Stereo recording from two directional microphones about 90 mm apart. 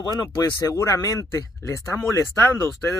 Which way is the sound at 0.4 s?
35° left (ahead or behind).